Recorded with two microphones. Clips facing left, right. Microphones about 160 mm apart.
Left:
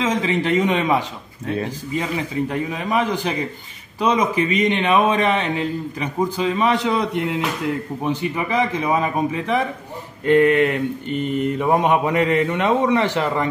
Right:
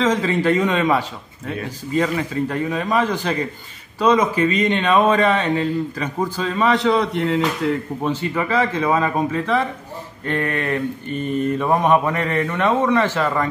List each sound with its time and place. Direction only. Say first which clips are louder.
0.0 s a man's voice: right 2 dB; 15° left (ahead or behind)